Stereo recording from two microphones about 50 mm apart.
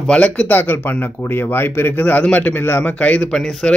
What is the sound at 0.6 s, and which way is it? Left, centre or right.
Speech, left.